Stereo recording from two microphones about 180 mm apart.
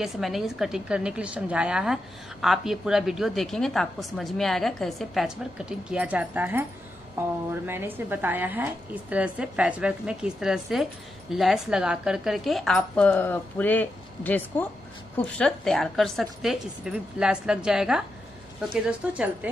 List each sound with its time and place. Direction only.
0.0 s a woman's voice: centre (ahead or behind)
7.6 s a woman's voice: 10° right (ahead or behind)